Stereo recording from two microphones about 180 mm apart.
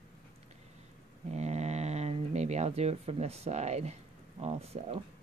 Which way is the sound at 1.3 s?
40° right (ahead or behind).